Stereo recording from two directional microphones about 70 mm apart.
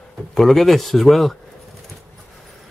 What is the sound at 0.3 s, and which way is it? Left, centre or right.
Speech, centre.